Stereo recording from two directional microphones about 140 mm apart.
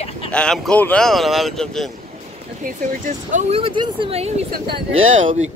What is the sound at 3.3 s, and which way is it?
Speech, 45° right (ahead or behind).